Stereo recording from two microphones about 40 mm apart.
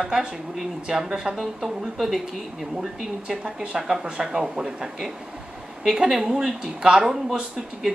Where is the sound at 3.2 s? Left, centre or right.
Right.